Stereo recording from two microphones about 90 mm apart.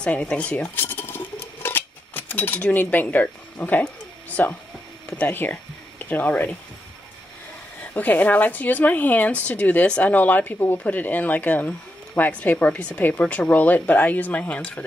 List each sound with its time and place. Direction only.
0.0 s cutlery: 15° left (ahead or behind)
4.4 s speech: 20° left (ahead or behind)
7.8 s speech: 20° left (ahead or behind)